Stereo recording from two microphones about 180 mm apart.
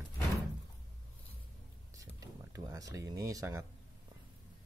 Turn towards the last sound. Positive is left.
turn(degrees=-15)  # may be behind; listen again after turning